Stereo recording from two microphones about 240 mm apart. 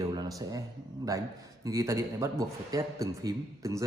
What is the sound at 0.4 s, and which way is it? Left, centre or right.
A man's voice, centre.